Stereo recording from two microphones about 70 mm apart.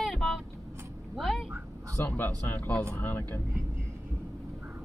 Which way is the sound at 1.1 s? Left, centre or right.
Centre.